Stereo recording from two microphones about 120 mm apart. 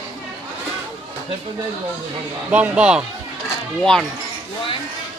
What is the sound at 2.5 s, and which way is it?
Speech, 10° right (ahead or behind).